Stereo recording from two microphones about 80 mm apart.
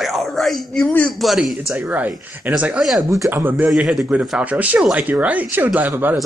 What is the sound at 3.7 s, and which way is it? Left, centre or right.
Speech, centre.